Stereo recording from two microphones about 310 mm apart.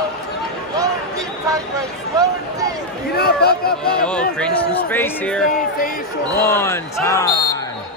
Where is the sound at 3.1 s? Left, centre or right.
Left.